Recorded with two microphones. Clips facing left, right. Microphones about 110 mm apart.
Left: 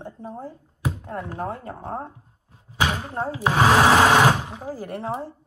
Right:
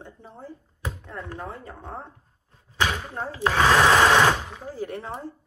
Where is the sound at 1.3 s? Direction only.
45° left (ahead or behind).